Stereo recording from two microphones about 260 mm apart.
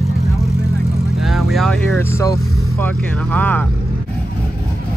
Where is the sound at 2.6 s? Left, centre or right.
Centre.